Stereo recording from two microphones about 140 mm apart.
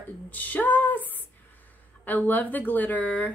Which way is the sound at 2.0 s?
10° left (ahead or behind).